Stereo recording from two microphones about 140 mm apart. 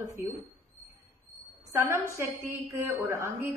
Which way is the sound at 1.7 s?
20° right (ahead or behind).